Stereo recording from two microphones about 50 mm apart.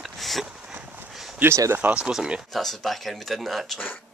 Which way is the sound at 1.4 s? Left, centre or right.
Right.